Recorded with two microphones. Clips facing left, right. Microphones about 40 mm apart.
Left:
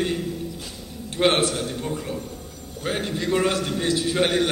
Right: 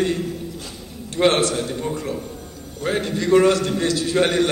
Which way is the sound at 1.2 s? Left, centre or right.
Centre.